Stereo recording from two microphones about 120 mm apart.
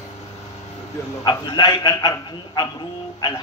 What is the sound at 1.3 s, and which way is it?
A man's voice, 35° left (ahead or behind).